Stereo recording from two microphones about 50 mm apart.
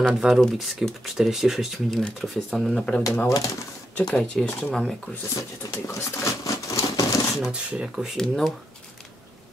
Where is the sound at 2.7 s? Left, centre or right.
Centre.